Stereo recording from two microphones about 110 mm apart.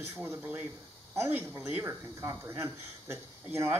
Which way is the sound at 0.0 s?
25° right (ahead or behind).